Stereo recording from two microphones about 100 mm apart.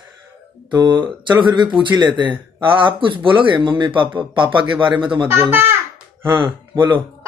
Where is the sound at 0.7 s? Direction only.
45° right (ahead or behind).